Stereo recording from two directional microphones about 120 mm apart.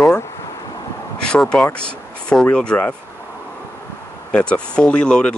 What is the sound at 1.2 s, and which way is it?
Speech, 5° left (ahead or behind).